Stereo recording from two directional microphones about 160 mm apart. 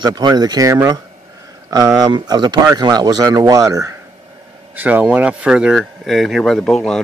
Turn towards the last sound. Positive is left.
turn(degrees=5)  # may be behind; listen again after turning